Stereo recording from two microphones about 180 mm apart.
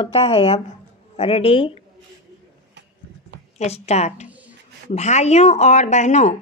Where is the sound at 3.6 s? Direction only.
35° left (ahead or behind).